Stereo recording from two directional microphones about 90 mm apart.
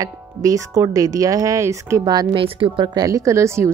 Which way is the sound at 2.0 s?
50° right (ahead or behind).